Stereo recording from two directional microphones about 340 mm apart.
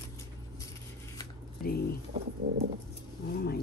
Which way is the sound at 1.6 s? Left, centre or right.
Left.